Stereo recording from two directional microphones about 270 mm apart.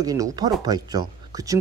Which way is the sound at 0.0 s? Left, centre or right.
Centre.